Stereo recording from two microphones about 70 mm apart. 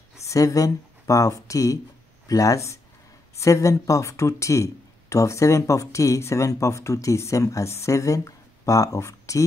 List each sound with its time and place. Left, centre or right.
0.3 s speech: left